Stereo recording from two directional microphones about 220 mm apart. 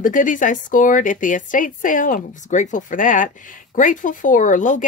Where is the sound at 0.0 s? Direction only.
35° left (ahead or behind).